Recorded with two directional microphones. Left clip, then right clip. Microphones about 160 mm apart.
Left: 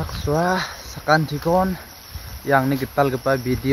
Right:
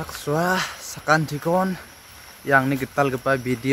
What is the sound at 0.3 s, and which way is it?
Speech, 15° right (ahead or behind).